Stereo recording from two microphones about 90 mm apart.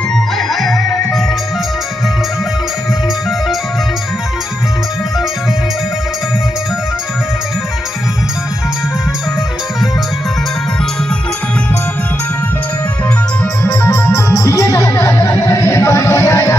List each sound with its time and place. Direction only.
0.6 s music: centre (ahead or behind)
13.7 s music: 30° left (ahead or behind)